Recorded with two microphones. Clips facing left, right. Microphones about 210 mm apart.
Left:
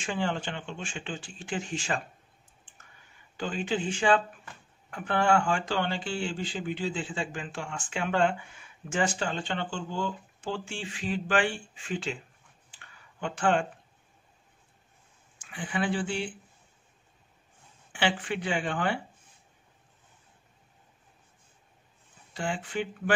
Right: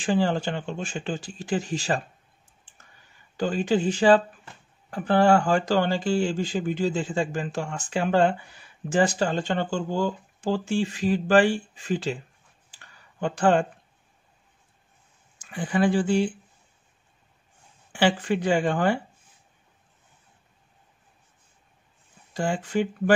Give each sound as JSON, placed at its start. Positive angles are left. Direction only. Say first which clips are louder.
{"t": 0.0, "sound": "speech", "louder": "right 7 dB", "side_deg": -35}
{"t": 3.3, "sound": "speech", "louder": "right 7 dB", "side_deg": -40}
{"t": 12.7, "sound": "a sound", "louder": "right 7 dB", "side_deg": -40}
{"t": 15.3, "sound": "speech", "louder": "right 7 dB", "side_deg": -40}
{"t": 17.9, "sound": "speech", "louder": "right 7 dB", "side_deg": -40}
{"t": 22.3, "sound": "speech", "louder": "right 7 dB", "side_deg": -40}